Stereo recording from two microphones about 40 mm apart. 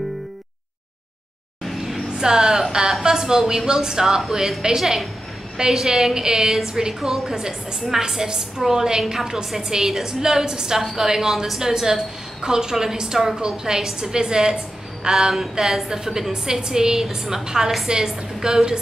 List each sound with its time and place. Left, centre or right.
2.1 s a woman's voice: centre